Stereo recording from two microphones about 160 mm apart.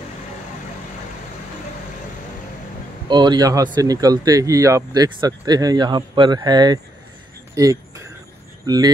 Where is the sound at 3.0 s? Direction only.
25° right (ahead or behind).